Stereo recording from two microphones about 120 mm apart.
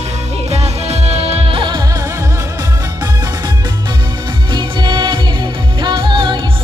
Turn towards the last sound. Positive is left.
turn(degrees=-40)  # may be behind; listen again after turning